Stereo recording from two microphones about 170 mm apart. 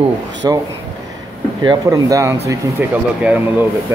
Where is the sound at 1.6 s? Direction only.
20° right (ahead or behind).